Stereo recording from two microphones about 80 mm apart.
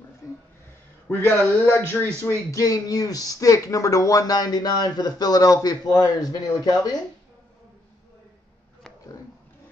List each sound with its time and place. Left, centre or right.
1.0 s a man's voice: left
2.2 s speech: left